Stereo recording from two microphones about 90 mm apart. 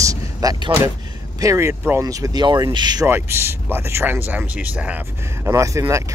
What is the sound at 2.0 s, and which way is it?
Speech, 40° right (ahead or behind).